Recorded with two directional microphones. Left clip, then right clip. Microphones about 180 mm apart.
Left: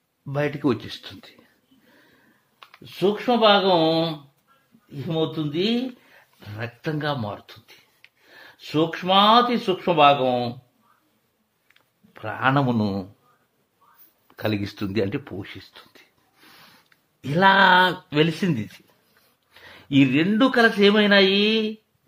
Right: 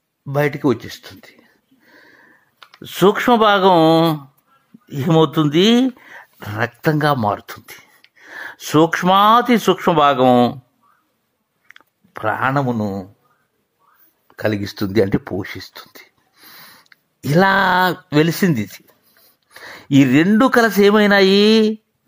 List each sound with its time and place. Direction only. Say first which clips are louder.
0.3 s speech: right 6 dB; 20° right (ahead or behind)
2.6 s speech: right 9 dB; 60° right (ahead or behind)
11.6 s chewing: right 13 dB; 45° right (ahead or behind)
12.4 s speech: right 2 dB; 15° right (ahead or behind)
14.2 s speech: right 6 dB; 15° right (ahead or behind)
14.8 s speech: right 8 dB; 30° right (ahead or behind)
16.3 s a sound: right 7 dB; 20° right (ahead or behind)
16.9 s speech: right 9 dB; 30° right (ahead or behind)